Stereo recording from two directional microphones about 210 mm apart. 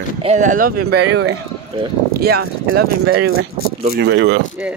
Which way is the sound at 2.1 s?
45° right (ahead or behind).